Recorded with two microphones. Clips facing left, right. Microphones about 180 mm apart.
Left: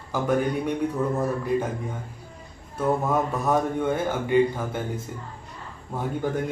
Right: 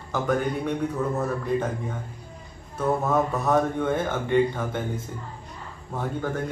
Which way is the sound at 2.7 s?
10° left (ahead or behind).